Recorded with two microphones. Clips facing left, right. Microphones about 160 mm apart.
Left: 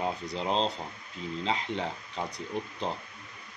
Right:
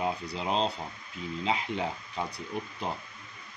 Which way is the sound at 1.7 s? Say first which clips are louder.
Right 1 dB; 10° right (ahead or behind).